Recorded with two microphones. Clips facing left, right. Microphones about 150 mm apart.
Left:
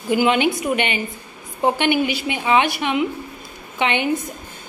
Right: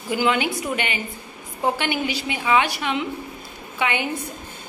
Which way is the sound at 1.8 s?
15° left (ahead or behind).